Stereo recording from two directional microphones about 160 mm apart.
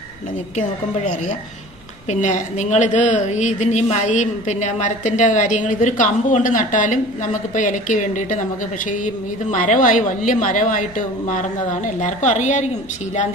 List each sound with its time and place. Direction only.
2.0 s a woman's voice: 50° left (ahead or behind)